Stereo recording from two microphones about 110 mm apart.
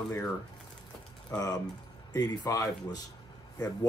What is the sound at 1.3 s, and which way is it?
Speech, 35° left (ahead or behind).